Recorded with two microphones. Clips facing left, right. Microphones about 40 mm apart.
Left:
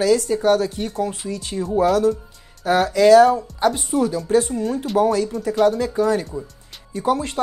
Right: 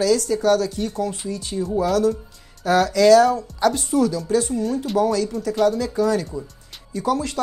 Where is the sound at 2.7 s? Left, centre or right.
Centre.